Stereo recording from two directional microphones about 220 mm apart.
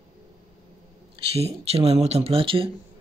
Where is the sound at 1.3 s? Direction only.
25° right (ahead or behind).